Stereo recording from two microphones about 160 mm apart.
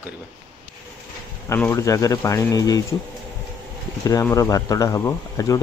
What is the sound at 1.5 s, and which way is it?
Speech, 15° left (ahead or behind).